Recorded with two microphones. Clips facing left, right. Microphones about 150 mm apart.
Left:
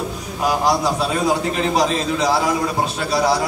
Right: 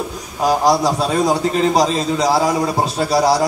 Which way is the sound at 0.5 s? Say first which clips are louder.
Right 3 dB; 35° right (ahead or behind).